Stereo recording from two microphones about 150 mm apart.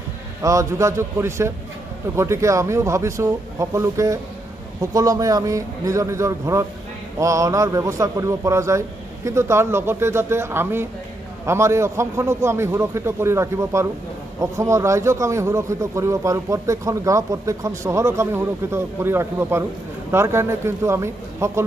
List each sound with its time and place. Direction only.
0.4 s a man's voice: 20° right (ahead or behind)